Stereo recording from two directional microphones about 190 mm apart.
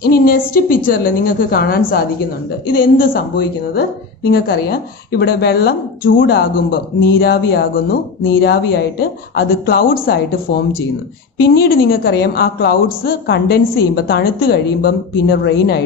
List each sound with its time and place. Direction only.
0.0 s a woman's voice: 50° left (ahead or behind)
11.4 s a woman's voice: 55° left (ahead or behind)